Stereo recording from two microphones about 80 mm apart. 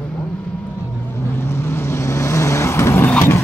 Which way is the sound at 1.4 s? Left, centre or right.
Left.